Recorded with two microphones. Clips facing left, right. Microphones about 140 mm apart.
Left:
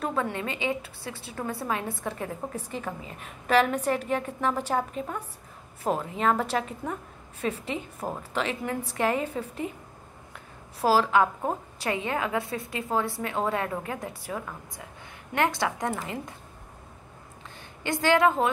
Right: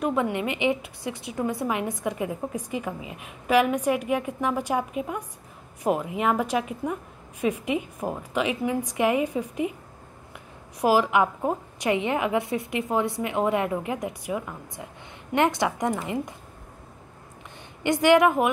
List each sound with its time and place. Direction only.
0.0 s a woman's voice: 15° right (ahead or behind)
10.8 s a woman's voice: 15° right (ahead or behind)
17.8 s a woman's voice: 20° right (ahead or behind)